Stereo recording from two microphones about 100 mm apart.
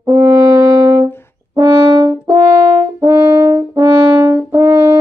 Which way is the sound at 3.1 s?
30° right (ahead or behind).